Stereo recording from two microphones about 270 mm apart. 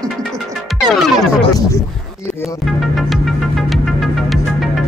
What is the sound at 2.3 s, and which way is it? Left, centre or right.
Music, centre.